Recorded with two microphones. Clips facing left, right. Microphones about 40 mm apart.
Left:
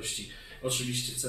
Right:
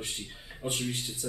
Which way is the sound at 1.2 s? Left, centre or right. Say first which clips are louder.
Right 2 dB; centre.